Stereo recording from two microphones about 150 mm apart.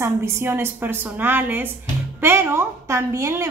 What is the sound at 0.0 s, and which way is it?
A woman's voice, 15° right (ahead or behind).